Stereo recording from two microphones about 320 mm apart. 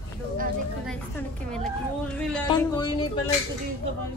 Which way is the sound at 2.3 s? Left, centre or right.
Centre.